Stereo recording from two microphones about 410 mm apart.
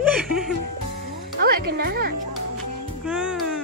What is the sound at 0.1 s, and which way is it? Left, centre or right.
Music, centre.